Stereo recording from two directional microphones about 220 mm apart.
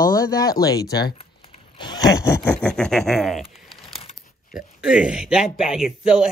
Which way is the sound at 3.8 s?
25° left (ahead or behind).